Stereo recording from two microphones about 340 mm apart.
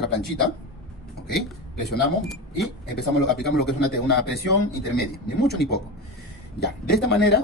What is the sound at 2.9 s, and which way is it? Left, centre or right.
Speech, left.